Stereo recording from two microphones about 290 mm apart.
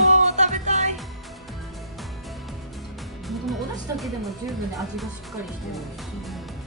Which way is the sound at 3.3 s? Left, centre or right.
Centre.